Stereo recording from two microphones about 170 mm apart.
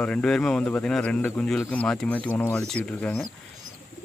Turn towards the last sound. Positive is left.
turn(degrees=5)  # may be behind; listen again after turning